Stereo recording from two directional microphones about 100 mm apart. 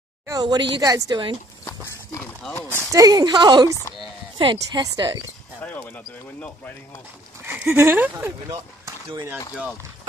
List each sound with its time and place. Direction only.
0.3 s speech: 45° right (ahead or behind)
2.7 s a woman's voice: 35° right (ahead or behind)
5.6 s speech: 15° left (ahead or behind)
7.4 s speech: 20° right (ahead or behind)
8.5 s speech: 35° right (ahead or behind)